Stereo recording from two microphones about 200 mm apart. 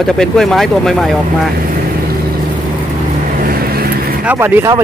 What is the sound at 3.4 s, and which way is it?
Vehicle, 50° right (ahead or behind).